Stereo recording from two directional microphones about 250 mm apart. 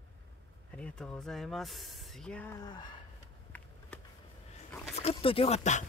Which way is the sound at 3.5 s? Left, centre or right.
Centre.